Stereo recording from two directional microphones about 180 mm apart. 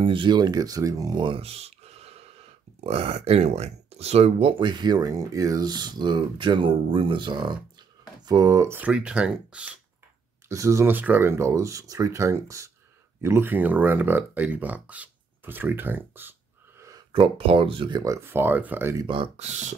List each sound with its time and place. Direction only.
0.0 s speech: 25° right (ahead or behind); by 9.7 s 5° right (ahead or behind)
10.5 s speech: 15° right (ahead or behind)
17.1 s speech: 30° right (ahead or behind); by 19.0 s 15° right (ahead or behind)
19.0 s speech: 30° right (ahead or behind)